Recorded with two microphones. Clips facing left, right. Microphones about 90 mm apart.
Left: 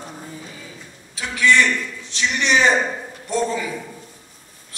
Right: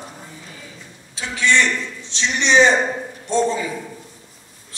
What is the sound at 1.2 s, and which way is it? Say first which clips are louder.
A man's voice: left 1 dB; 25° right (ahead or behind).